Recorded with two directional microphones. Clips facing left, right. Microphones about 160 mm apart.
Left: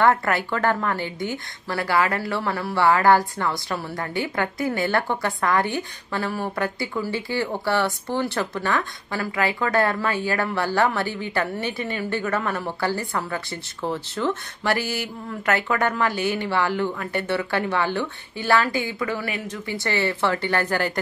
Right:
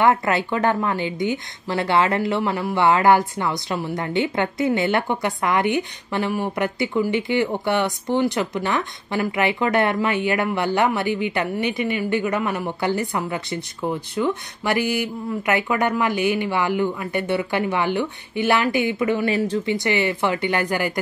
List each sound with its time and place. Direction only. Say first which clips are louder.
0.0 s a woman's voice: right 1 dB; 20° right (ahead or behind)
19.3 s speech: right 10 dB; 30° right (ahead or behind)
19.6 s speech: right 4 dB; 20° right (ahead or behind)